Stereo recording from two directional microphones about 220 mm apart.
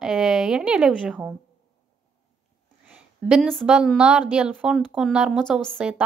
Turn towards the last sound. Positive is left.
turn(degrees=-5)  # may be behind; listen again after turning